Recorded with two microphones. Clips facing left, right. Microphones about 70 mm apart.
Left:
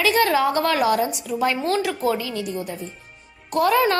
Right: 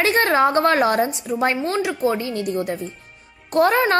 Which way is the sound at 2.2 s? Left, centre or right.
Right.